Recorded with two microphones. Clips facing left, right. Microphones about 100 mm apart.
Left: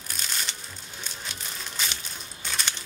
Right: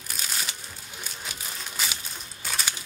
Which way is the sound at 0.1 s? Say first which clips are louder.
Right 1 dB; 5° right (ahead or behind).